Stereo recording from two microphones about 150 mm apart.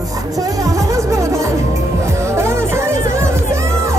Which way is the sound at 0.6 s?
20° right (ahead or behind).